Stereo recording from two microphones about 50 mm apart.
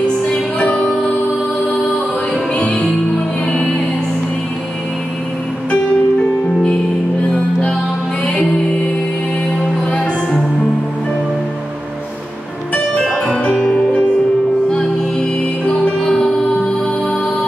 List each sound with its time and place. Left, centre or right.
0.3 s music: left
2.5 s music: left
5.7 s music: left
9.8 s music: centre
12.9 s music: centre